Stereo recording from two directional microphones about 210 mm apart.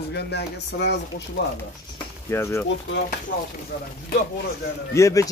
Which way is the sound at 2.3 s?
15° left (ahead or behind).